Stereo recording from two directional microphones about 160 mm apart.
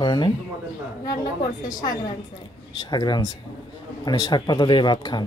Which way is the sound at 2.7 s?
25° left (ahead or behind).